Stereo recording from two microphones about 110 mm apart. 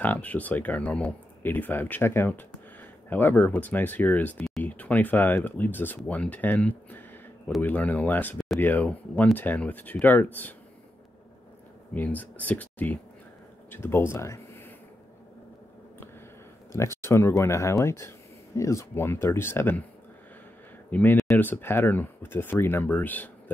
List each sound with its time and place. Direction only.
0.0 s speech: 15° left (ahead or behind)
4.4 s a sound: 5° left (ahead or behind)
4.6 s speech: 15° left (ahead or behind)
11.9 s speech: 15° left (ahead or behind)
16.7 s speech: 25° left (ahead or behind)
20.9 s speech: 20° left (ahead or behind)